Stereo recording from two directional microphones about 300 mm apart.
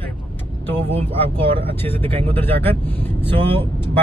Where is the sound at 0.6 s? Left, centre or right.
Centre.